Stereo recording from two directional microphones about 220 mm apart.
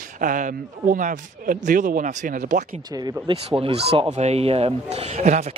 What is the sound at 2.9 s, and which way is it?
Speech, 15° right (ahead or behind).